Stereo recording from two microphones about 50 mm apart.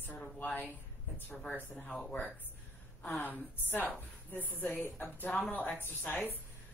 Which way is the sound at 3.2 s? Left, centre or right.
Left.